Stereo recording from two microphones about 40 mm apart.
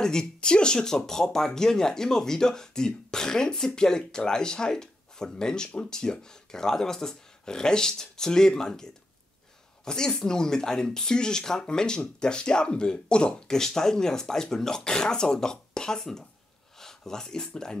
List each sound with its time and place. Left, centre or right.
0.0 s speech: centre